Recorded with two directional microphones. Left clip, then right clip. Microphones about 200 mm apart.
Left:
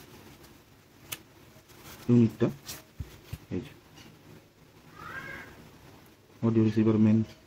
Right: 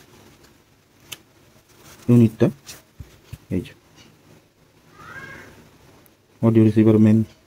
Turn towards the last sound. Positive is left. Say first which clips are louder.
# right 10 dB
turn(degrees=-25)  # may be behind; listen again after turning